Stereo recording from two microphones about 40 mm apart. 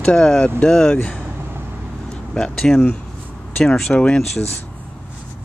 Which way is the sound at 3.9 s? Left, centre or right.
Left.